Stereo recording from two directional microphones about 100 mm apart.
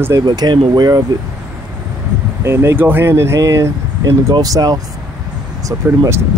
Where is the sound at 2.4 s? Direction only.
25° right (ahead or behind); by 5.9 s 40° right (ahead or behind).